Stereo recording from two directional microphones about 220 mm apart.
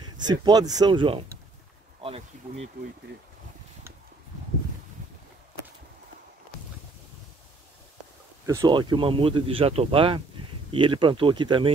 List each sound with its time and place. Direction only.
0.0 s speech: 20° right (ahead or behind)
8.5 s speech: 15° right (ahead or behind)